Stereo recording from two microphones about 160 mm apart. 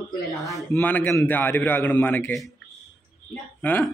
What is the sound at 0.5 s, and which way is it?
A man's voice, 15° left (ahead or behind).